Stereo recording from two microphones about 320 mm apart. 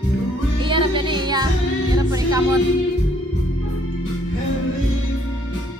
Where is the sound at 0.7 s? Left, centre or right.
Centre.